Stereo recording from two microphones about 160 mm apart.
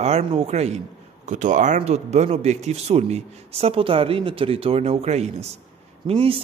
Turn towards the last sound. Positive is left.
turn(degrees=-35)  # may be behind; listen again after turning